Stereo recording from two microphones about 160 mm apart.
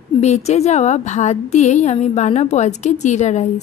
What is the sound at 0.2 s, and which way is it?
A woman's voice, 45° left (ahead or behind).